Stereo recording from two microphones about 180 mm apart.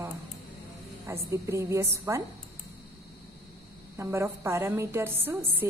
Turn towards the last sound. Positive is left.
turn(degrees=-10)  # may be behind; listen again after turning